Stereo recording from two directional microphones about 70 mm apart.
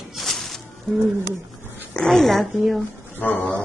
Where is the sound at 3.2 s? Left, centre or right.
Left.